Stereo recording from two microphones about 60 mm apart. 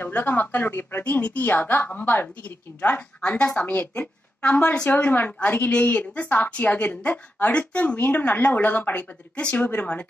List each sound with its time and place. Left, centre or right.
0.0 s a woman's voice: left
3.2 s speech: centre